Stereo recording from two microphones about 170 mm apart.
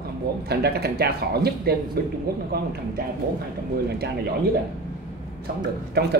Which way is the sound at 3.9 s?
75° right (ahead or behind).